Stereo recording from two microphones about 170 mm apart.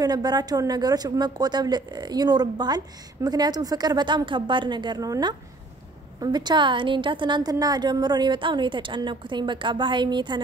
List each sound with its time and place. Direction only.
0.0 s a woman's voice: 25° right (ahead or behind)